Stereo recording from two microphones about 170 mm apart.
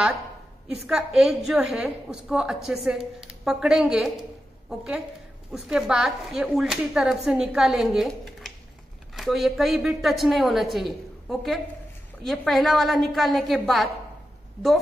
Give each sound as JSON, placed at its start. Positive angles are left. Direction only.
{"t": 0.7, "sound": "a woman's voice", "side_deg": -5}